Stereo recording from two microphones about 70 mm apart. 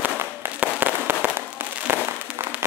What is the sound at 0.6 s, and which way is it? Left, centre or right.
Fireworks, right.